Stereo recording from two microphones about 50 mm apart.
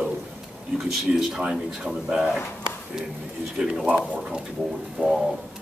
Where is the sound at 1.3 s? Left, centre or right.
Centre.